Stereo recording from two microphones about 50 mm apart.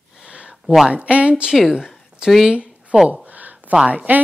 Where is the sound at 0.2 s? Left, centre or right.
Right.